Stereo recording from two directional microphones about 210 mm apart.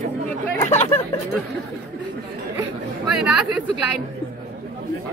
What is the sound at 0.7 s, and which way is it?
Speech, 35° left (ahead or behind).